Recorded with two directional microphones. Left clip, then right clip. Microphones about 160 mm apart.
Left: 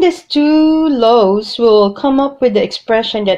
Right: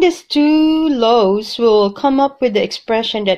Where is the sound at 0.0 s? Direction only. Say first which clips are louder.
Left 1 dB; 30° right (ahead or behind).